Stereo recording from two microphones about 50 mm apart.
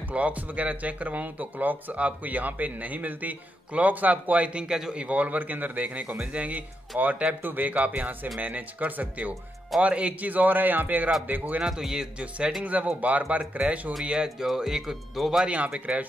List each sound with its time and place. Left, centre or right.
0.1 s speech: right
5.0 s speech: right
11.6 s speech: centre
12.2 s speech: right; by 15.4 s centre
15.4 s speech: right